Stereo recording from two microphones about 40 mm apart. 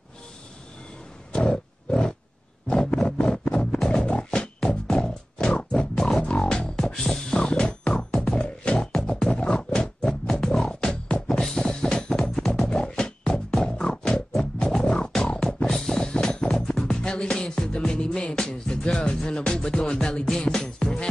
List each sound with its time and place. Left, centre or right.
1.3 s wild animals: left
2.7 s a sound: centre
3.5 s music: centre
7.0 s music: centre
7.3 s music: left
11.4 s music: centre
15.7 s music: centre
16.0 s music: centre